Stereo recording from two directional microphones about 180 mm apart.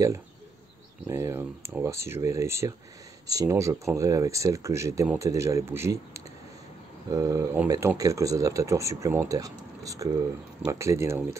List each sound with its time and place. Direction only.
1.0 s speech: 15° right (ahead or behind)